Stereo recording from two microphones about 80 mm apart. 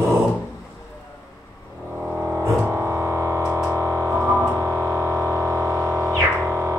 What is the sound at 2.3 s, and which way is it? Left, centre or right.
Music, right.